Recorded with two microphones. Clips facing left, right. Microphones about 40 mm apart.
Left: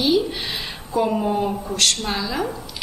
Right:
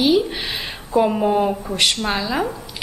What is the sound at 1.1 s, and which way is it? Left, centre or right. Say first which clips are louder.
A woman's voice: right 3 dB; right.